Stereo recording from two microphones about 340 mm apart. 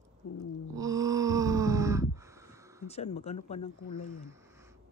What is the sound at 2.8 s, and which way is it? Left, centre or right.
Speech, centre.